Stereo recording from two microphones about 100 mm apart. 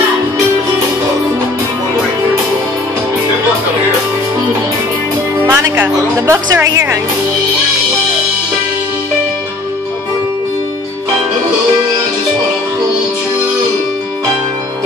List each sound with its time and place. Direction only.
5.5 s music: 25° right (ahead or behind)